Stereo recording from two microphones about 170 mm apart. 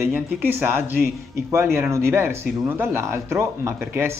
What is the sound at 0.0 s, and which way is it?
Speech, 15° right (ahead or behind).